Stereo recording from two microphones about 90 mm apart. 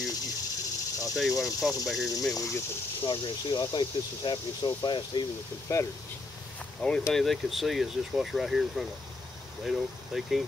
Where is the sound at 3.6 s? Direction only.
55° left (ahead or behind).